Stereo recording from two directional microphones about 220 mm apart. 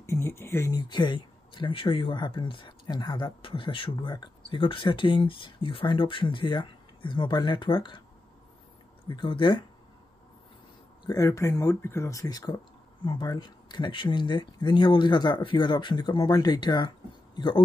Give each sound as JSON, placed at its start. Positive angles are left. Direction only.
{"t": 0.0, "sound": "speech", "side_deg": 10}
{"t": 9.0, "sound": "speech", "side_deg": 20}
{"t": 11.1, "sound": "speech", "side_deg": 15}